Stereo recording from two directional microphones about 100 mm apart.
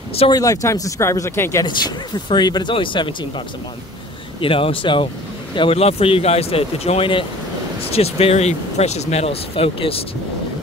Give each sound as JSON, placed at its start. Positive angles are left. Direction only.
{"t": 0.3, "sound": "speech", "side_deg": 35}
{"t": 2.2, "sound": "speech", "side_deg": 45}
{"t": 5.8, "sound": "speech", "side_deg": 85}
{"t": 7.9, "sound": "speech", "side_deg": 90}